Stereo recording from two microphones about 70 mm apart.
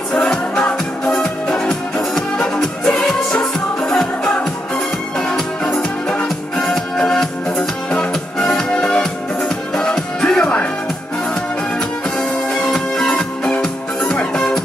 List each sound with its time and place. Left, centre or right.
0.3 s music: centre
6.2 s music: centre
12.7 s music: centre